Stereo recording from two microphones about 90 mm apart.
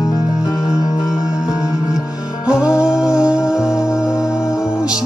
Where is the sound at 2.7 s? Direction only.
10° right (ahead or behind).